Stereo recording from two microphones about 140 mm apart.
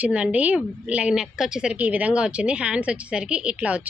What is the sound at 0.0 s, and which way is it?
A woman's voice, 10° right (ahead or behind).